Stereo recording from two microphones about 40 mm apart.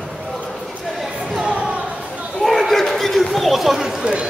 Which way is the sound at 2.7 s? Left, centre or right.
Centre.